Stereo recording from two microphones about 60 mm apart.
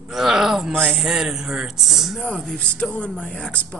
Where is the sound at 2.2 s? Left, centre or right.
Centre.